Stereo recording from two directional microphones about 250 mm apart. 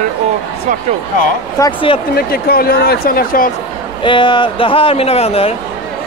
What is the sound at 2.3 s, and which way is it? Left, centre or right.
Speech, left.